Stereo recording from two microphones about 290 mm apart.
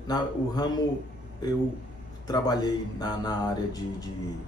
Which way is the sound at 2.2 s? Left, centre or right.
Centre.